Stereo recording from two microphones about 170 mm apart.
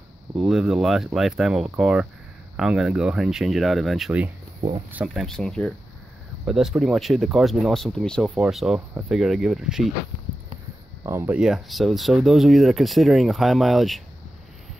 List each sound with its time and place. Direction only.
0.4 s speech: 5° right (ahead or behind)
11.1 s speech: 15° right (ahead or behind)
11.3 s speech: 5° right (ahead or behind)